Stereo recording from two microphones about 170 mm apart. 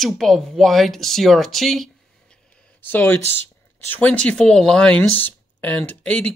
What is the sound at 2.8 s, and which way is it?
Speech, 10° left (ahead or behind).